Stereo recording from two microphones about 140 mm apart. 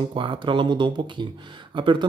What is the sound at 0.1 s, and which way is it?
Speech, 35° right (ahead or behind).